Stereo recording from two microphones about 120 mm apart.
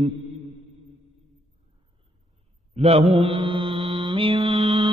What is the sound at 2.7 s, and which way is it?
Mantra, 60° right (ahead or behind).